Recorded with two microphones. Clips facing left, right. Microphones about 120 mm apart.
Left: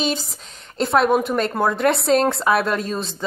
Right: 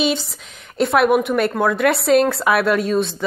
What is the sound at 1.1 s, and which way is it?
Speech, 30° left (ahead or behind).